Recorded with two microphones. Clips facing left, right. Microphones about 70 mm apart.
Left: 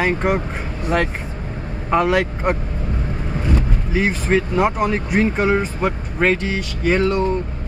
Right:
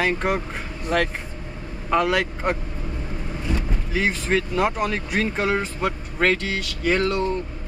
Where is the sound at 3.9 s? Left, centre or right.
Centre.